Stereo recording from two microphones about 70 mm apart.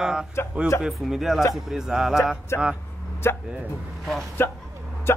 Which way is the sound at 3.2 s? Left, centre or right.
Left.